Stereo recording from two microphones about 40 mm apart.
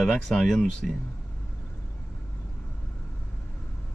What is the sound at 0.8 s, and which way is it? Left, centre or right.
Speech, centre.